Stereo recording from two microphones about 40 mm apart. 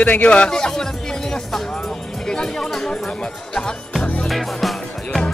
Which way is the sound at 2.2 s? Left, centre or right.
Centre.